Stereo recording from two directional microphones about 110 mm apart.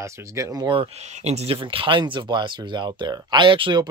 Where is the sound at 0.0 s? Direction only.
30° right (ahead or behind).